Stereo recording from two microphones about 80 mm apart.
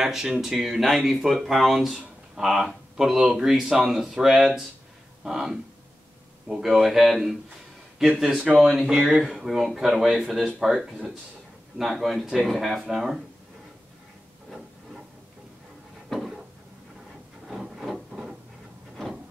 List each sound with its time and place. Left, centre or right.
0.0 s speech: centre
8.3 s speech: centre
8.5 s speech: centre
16.1 s a sound: centre
17.5 s rub: centre